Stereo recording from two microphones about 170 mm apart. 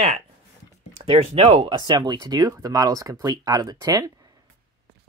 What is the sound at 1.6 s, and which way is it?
Speech, 25° right (ahead or behind).